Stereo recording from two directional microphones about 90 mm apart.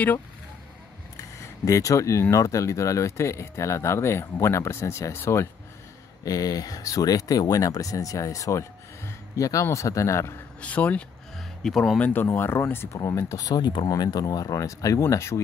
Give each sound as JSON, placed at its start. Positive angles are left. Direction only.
{"t": 1.1, "sound": "a sound", "side_deg": 35}
{"t": 2.3, "sound": "speech", "side_deg": 35}
{"t": 6.2, "sound": "speech", "side_deg": 45}
{"t": 10.6, "sound": "speech", "side_deg": 15}
{"t": 11.3, "sound": "music", "side_deg": 0}
{"t": 12.0, "sound": "speech", "side_deg": 25}